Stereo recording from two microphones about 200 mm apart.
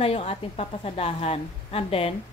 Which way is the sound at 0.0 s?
30° left (ahead or behind).